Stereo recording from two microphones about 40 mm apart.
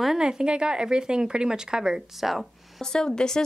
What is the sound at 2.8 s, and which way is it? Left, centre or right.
Speech, centre.